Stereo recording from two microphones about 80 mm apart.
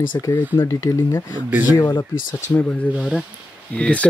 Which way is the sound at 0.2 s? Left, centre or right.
Left.